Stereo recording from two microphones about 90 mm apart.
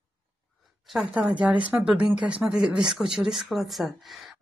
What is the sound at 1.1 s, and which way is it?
A woman's voice, 10° right (ahead or behind).